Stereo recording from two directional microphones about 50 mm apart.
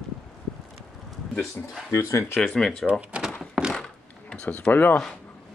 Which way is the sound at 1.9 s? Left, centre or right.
Left.